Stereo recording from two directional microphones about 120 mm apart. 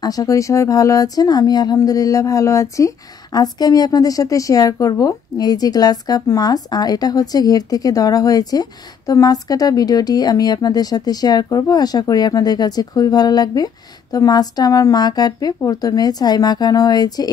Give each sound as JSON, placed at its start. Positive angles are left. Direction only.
{"t": 0.0, "sound": "speech", "side_deg": 30}